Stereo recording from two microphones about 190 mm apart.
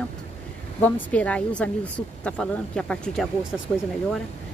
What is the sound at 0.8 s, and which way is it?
A woman's voice, 5° left (ahead or behind).